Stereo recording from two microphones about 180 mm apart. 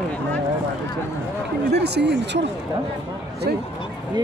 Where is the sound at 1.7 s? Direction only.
70° right (ahead or behind).